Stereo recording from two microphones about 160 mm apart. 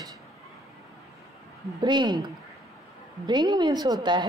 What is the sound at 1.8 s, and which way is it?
A woman's voice, 30° right (ahead or behind).